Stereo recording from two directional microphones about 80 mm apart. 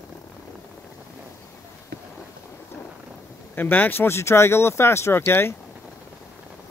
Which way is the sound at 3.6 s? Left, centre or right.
Left.